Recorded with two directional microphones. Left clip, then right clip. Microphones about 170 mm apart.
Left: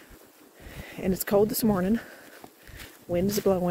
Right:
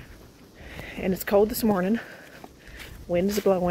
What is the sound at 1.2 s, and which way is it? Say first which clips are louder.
Speech: right 2 dB; 35° left (ahead or behind).